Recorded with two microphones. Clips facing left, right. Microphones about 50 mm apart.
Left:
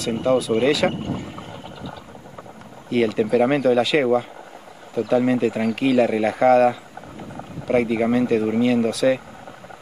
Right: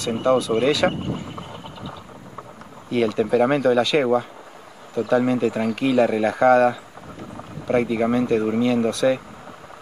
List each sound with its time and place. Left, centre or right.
0.1 s speech: centre
3.1 s speech: centre